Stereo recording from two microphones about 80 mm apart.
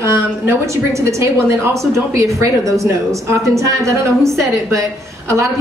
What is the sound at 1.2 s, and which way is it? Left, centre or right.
A woman's voice, right.